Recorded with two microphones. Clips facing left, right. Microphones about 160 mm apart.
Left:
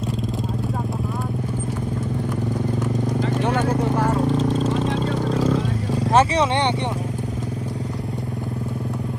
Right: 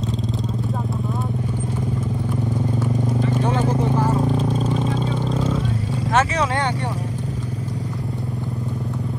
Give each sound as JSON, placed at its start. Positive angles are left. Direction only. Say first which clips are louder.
{"t": 4.4, "sound": "vehicle", "louder": "left 1 dB", "side_deg": 0}
{"t": 6.1, "sound": "vehicle", "louder": "left 2 dB", "side_deg": 25}